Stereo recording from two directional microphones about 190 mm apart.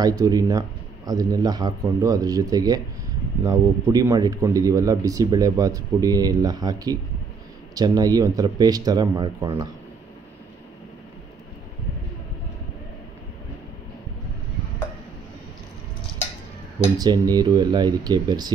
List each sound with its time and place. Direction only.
0.2 s speech: 20° right (ahead or behind)
17.0 s speech: 20° right (ahead or behind)